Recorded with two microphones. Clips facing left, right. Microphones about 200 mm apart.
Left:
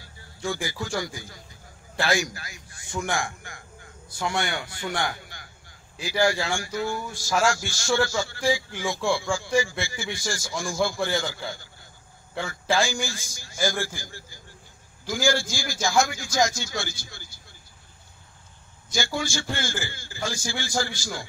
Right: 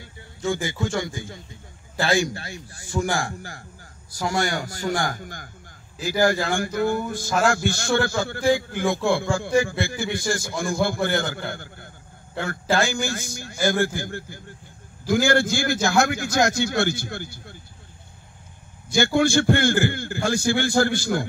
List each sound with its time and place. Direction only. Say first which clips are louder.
0.0 s a sound: right 4 dB; 25° right (ahead or behind)
0.9 s a man's voice: right 3 dB; 25° right (ahead or behind); by 17.6 s 60° right (ahead or behind)
18.9 s a man's voice: right 9 dB; 60° right (ahead or behind)